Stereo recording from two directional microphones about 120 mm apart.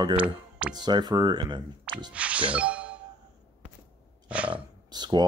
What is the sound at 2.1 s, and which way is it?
Music, 10° right (ahead or behind).